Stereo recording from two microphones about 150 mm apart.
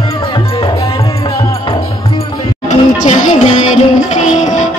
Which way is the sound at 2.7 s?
50° left (ahead or behind).